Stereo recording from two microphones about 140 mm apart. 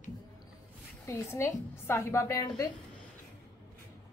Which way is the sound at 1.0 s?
20° left (ahead or behind).